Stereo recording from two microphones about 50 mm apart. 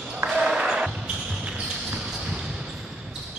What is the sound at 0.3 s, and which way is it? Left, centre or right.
Basketball bounce, centre.